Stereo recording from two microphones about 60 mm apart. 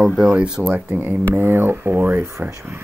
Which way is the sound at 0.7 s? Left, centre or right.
Right.